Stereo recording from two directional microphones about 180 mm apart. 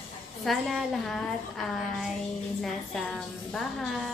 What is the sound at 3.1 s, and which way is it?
Speech, centre (ahead or behind).